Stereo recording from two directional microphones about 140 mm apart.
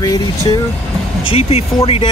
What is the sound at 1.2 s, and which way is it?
Speech, 45° left (ahead or behind).